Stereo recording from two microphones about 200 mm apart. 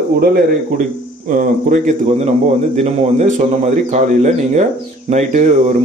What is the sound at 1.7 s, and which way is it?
A man's voice, 35° right (ahead or behind).